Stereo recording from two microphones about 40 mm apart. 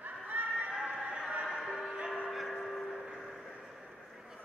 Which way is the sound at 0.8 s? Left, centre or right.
Right.